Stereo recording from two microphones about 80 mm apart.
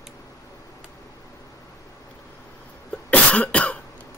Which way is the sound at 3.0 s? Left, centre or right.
Centre.